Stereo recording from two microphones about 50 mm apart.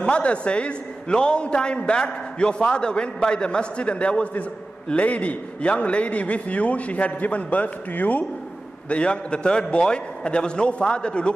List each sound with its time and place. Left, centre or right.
0.0 s a man's voice: left
8.8 s a man's voice: left